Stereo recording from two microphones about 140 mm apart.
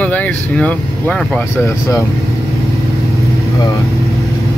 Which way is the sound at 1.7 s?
20° left (ahead or behind).